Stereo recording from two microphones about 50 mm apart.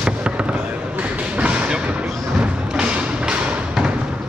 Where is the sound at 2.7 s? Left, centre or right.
Centre.